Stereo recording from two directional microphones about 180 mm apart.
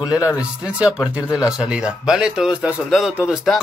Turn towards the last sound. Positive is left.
turn(degrees=-5)  # may be behind; listen again after turning